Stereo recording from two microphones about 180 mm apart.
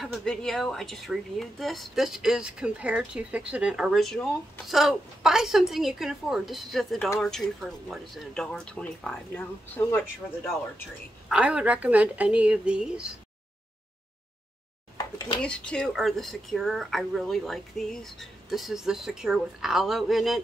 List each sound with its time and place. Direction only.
0.0 s speech: centre (ahead or behind)
11.2 s a woman's voice: 5° right (ahead or behind)
15.1 s speech: 25° left (ahead or behind)
15.4 s speech: 5° left (ahead or behind)